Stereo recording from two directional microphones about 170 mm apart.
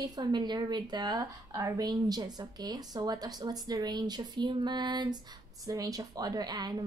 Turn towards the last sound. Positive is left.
turn(degrees=-25)  # may be behind; listen again after turning